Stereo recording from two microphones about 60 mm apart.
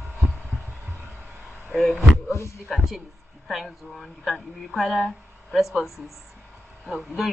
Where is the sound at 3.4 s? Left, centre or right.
Centre.